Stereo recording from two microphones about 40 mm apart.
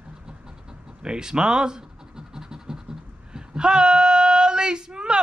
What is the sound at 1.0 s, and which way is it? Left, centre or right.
Speech, right.